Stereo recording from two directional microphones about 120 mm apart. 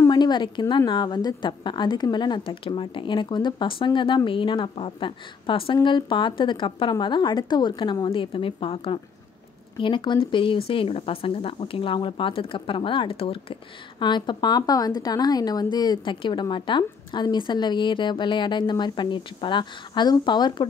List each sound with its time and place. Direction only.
0.1 s speech: 40° left (ahead or behind)